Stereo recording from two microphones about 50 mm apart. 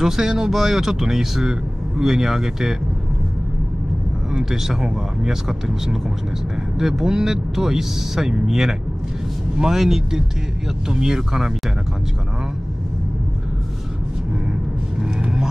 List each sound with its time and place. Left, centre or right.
0.0 s speech: centre
4.3 s speech: centre
15.0 s vehicle: centre